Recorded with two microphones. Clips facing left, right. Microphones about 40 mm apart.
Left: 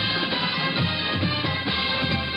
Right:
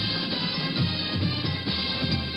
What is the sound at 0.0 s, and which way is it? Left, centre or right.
Music, left.